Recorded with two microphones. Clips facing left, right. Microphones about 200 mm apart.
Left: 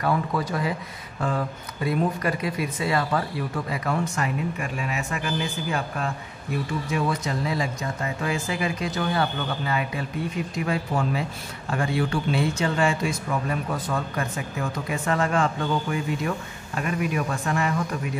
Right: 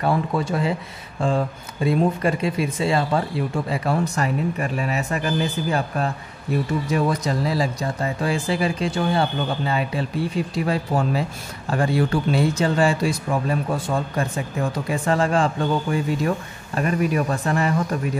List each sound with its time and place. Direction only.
0.0 s speech: 25° right (ahead or behind)